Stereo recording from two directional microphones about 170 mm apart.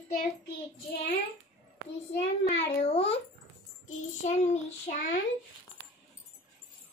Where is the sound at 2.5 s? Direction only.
35° left (ahead or behind).